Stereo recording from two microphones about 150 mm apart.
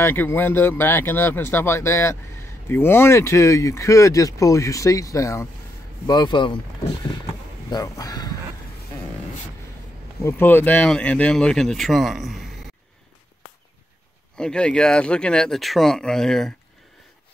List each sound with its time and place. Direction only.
0.0 s speech: 15° left (ahead or behind); by 6.6 s 30° left (ahead or behind)
7.7 s speech: 25° left (ahead or behind)
10.2 s speech: 15° left (ahead or behind)
14.3 s speech: 5° left (ahead or behind)